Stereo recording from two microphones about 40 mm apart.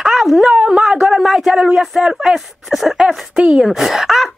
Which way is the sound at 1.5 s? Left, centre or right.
Right.